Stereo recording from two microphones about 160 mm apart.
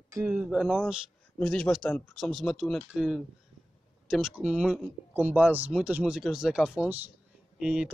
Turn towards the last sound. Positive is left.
turn(degrees=-5)  # may be behind; listen again after turning